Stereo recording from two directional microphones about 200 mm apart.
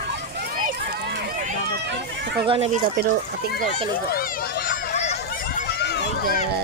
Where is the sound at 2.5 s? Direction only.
30° right (ahead or behind).